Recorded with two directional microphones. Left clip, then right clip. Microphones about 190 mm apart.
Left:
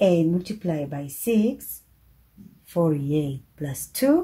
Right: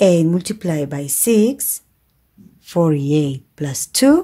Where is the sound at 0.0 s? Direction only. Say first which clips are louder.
Right 6 dB; 45° right (ahead or behind).